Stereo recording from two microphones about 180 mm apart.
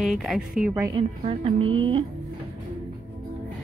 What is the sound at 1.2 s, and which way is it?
Speech, 30° right (ahead or behind).